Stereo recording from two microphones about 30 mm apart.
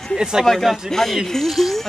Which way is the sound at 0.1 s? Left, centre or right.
Right.